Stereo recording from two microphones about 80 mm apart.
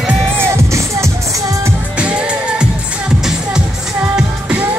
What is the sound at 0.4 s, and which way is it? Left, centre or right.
Music, right.